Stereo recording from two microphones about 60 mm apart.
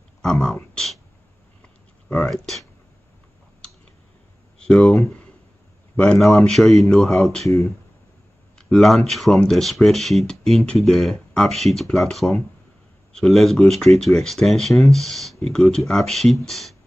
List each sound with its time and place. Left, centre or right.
0.2 s speech: centre
2.2 s speech: centre
4.6 s a sound: centre
4.8 s speech: centre
6.1 s speech: centre
8.7 s speech: centre